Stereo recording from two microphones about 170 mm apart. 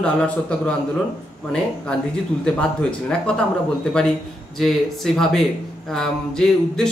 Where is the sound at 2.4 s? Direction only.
5° left (ahead or behind).